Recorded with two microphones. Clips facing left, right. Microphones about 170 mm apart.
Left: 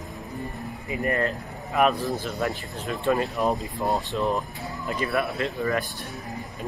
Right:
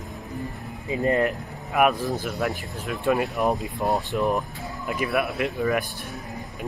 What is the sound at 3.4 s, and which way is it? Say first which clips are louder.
Speech: right 2 dB; 20° right (ahead or behind).